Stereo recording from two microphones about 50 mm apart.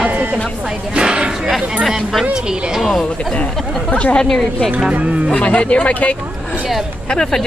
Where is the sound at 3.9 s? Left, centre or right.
Left.